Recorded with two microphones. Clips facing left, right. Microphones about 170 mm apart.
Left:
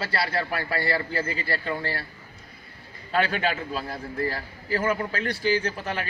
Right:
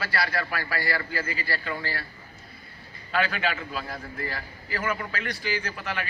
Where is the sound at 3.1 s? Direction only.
30° left (ahead or behind).